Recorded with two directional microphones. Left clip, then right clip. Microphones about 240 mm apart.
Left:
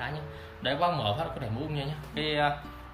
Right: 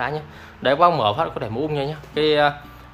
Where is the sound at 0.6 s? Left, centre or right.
Centre.